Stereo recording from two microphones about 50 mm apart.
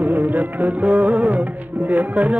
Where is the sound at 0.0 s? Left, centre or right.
Right.